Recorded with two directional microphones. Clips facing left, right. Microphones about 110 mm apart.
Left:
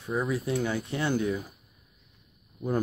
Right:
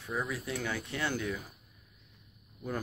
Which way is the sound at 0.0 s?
25° left (ahead or behind).